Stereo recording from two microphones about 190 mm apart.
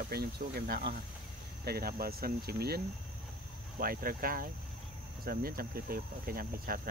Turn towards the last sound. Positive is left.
turn(degrees=-50)  # may be behind; listen again after turning